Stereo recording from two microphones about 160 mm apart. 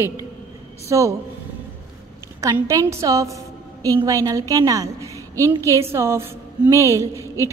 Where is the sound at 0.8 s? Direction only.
20° right (ahead or behind).